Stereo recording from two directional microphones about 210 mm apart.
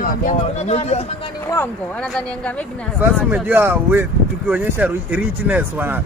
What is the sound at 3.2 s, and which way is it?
Speech, 10° right (ahead or behind).